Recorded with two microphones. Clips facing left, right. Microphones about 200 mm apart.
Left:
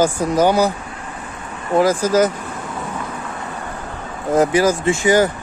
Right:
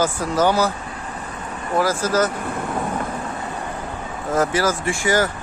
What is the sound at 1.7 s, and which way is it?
Speech, 15° left (ahead or behind).